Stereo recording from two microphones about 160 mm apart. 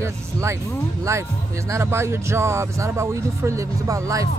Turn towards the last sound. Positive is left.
turn(degrees=-20)  # may be behind; listen again after turning